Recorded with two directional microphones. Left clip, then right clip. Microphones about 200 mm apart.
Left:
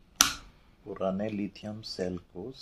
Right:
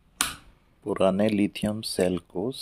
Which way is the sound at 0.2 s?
35° left (ahead or behind).